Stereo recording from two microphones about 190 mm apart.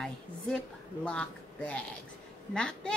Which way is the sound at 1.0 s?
5° left (ahead or behind).